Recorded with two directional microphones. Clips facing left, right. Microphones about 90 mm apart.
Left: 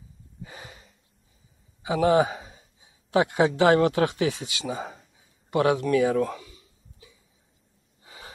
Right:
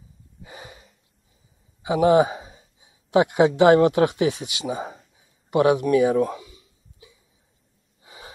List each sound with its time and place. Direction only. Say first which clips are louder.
0.4 s gasp: right 1 dB; 20° right (ahead or behind)
1.8 s a man's voice: right 4 dB; 20° right (ahead or behind)
5.5 s a sound: right 4 dB; 20° right (ahead or behind)
8.0 s gasp: right 2 dB; 20° right (ahead or behind)